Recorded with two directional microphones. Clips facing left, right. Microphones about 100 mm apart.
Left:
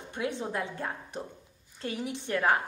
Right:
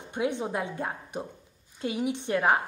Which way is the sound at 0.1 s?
20° right (ahead or behind).